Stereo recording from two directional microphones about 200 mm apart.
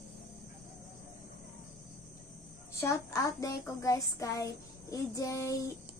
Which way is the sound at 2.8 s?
15° left (ahead or behind).